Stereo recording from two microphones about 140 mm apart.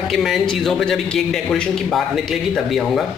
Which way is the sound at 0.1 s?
Centre (ahead or behind).